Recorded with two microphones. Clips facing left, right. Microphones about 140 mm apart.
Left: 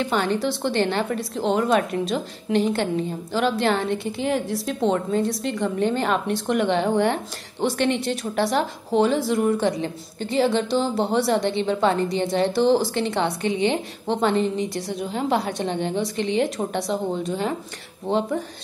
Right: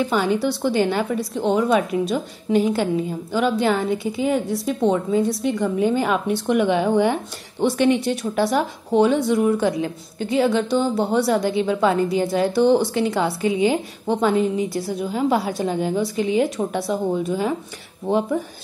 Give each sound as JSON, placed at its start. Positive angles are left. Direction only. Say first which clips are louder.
{"t": 0.0, "sound": "a woman's voice", "louder": "right 2 dB", "side_deg": -5}